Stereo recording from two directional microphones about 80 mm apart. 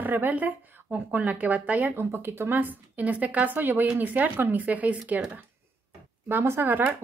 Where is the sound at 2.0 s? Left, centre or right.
Right.